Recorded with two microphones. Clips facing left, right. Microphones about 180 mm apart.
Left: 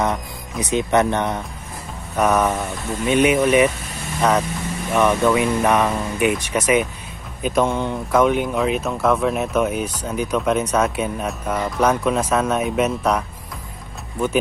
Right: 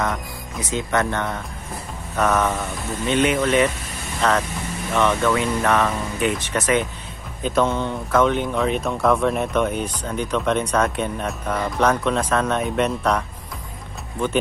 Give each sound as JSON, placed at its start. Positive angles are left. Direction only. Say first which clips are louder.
{"t": 0.0, "sound": "speech", "louder": "left 3 dB", "side_deg": 20}